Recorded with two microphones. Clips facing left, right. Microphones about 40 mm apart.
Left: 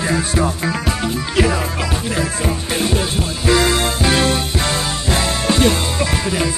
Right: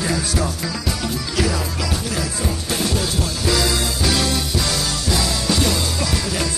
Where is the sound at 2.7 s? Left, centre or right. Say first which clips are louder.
Left 2 dB; left.